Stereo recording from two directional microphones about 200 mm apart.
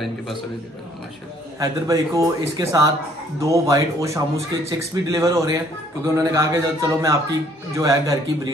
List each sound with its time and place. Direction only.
1.6 s a man's voice: 15° right (ahead or behind)